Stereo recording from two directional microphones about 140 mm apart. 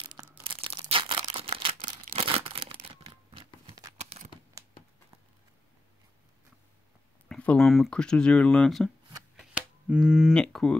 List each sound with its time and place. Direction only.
0.0 s tearing: 30° right (ahead or behind)
0.4 s a sound: 40° right (ahead or behind)
2.1 s tearing: 45° right (ahead or behind)
4.0 s crumpling: 55° right (ahead or behind)
7.2 s speech: 5° left (ahead or behind)
9.4 s a sound: 10° right (ahead or behind)
10.4 s speech: 5° left (ahead or behind)